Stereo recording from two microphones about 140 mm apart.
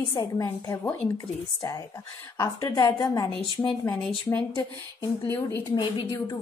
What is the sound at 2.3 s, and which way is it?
Speech, 25° left (ahead or behind).